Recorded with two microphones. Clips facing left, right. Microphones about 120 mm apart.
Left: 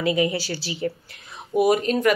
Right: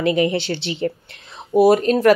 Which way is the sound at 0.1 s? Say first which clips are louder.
Right 4 dB; 25° right (ahead or behind).